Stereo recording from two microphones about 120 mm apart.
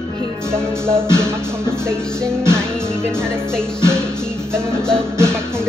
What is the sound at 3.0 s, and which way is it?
Music, 20° right (ahead or behind).